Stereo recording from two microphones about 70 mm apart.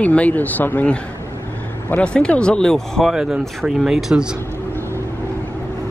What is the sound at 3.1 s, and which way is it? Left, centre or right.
Speech, centre.